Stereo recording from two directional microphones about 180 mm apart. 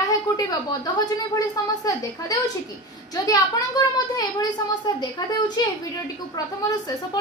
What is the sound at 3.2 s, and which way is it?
A woman's voice, 20° left (ahead or behind).